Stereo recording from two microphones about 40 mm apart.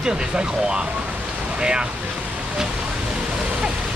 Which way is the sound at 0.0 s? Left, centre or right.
Right.